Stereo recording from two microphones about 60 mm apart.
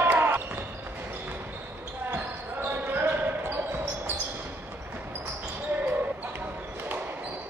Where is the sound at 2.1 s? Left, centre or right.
Right.